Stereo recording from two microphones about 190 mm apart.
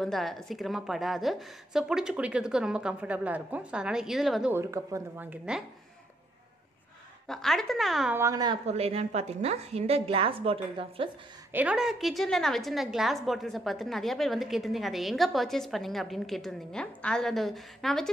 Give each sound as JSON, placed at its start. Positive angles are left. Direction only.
{"t": 0.0, "sound": "a woman's voice", "side_deg": 0}
{"t": 7.2, "sound": "a woman's voice", "side_deg": 0}
{"t": 8.2, "sound": "a woman's voice", "side_deg": -20}
{"t": 8.6, "sound": "a woman's voice", "side_deg": -30}
{"t": 11.5, "sound": "a woman's voice", "side_deg": -5}